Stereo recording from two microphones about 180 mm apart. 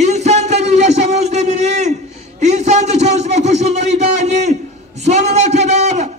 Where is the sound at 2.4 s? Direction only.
40° right (ahead or behind).